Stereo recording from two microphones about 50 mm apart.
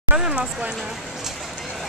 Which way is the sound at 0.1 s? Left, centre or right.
Right.